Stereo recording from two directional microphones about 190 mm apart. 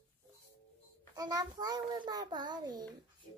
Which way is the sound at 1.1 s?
20° right (ahead or behind).